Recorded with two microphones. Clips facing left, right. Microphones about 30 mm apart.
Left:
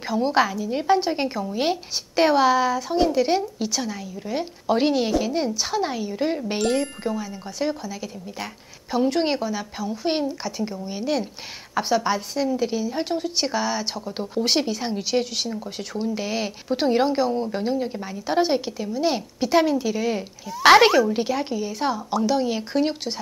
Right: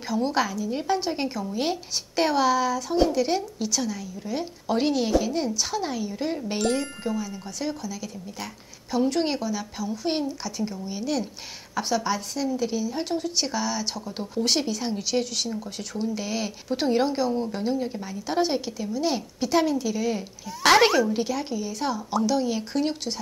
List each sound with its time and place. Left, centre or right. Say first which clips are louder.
0.0 s a woman's voice: left 4 dB; centre
21.1 s a woman's voice: left 3 dB; centre